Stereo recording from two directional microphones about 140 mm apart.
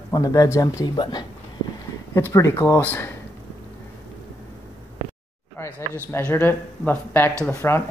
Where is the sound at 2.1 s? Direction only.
20° left (ahead or behind).